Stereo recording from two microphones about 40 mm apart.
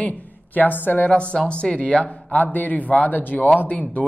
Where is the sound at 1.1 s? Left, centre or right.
Left.